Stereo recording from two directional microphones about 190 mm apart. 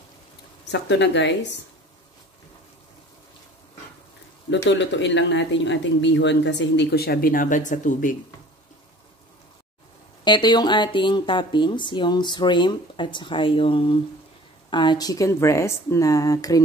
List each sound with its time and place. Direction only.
0.7 s speech: 65° left (ahead or behind)
4.6 s speech: 70° left (ahead or behind); by 8.2 s 45° left (ahead or behind)
10.2 s speech: 25° left (ahead or behind)